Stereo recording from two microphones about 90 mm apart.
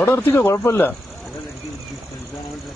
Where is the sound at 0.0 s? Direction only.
25° left (ahead or behind).